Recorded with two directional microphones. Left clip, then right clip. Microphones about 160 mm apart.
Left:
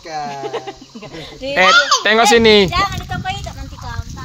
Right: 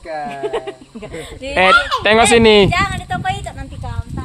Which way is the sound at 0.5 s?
65° right (ahead or behind).